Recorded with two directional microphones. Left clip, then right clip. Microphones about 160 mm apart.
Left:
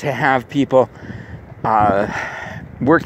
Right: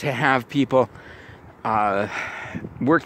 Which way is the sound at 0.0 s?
20° right (ahead or behind).